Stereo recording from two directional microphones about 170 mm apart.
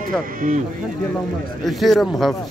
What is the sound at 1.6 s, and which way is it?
Speech, centre (ahead or behind).